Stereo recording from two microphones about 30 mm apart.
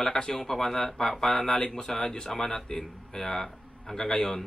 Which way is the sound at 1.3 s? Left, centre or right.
Left.